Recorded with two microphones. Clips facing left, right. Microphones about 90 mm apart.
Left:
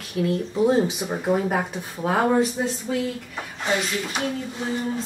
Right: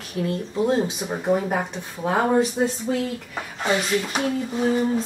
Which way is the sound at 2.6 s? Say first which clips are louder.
Right 4 dB; 30° right (ahead or behind).